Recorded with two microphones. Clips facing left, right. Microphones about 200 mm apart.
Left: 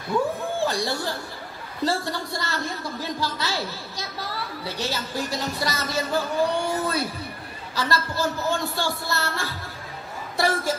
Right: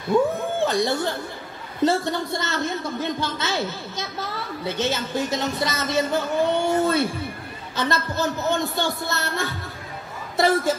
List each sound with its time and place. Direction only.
0.6 s a woman's voice: 20° right (ahead or behind)